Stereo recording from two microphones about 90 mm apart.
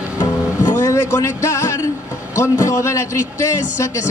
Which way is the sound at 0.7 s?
30° left (ahead or behind).